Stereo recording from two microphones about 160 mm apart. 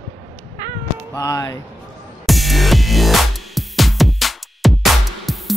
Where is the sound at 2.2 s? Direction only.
Centre (ahead or behind).